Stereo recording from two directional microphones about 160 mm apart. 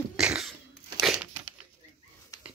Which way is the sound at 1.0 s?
5° right (ahead or behind).